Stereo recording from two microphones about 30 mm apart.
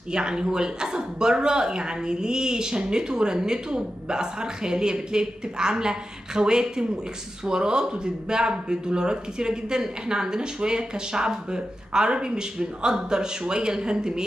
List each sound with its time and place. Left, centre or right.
0.1 s speech: right